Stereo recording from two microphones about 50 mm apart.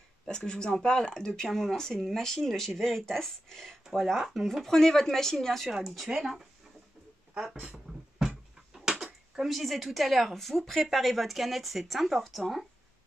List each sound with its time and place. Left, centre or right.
0.3 s speech: centre
4.6 s speech: centre
5.7 s speech: centre
8.7 s speech: centre